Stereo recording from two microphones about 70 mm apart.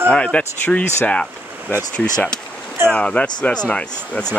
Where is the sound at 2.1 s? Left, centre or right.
Centre.